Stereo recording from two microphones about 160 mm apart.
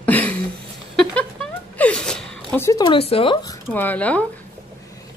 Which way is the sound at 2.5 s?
20° left (ahead or behind).